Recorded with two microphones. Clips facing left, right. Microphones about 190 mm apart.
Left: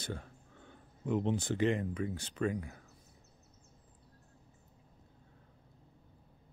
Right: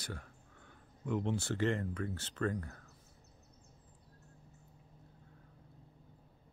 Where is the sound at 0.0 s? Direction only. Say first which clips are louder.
Left 4 dB; 25° left (ahead or behind).